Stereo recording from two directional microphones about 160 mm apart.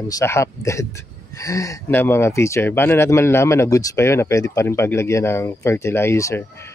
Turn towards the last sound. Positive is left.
turn(degrees=20)  # may be behind; listen again after turning